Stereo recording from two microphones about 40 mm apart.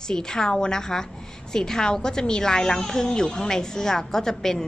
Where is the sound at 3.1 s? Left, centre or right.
Centre.